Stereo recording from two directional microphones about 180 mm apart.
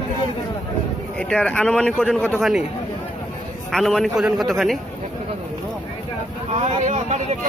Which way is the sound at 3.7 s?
Centre (ahead or behind).